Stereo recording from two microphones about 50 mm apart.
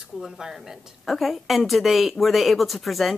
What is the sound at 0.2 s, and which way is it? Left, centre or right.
Speech, centre.